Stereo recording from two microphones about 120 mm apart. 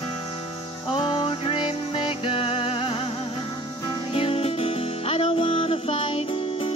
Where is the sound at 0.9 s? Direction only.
40° left (ahead or behind).